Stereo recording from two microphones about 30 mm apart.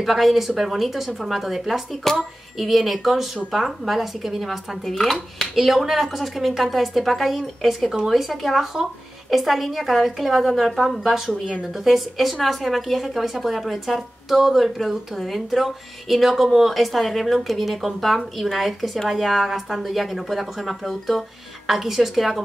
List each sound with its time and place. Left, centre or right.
0.0 s speech: centre
4.8 s speech: centre
11.1 s speech: centre